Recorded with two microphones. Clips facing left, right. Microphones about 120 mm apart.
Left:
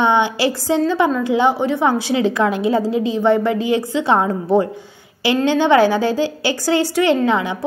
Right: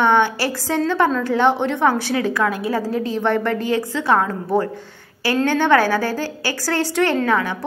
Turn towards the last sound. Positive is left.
turn(degrees=20)  # may be behind; listen again after turning